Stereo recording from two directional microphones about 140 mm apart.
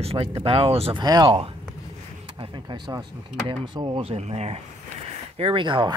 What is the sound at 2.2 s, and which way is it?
Speech, 40° right (ahead or behind).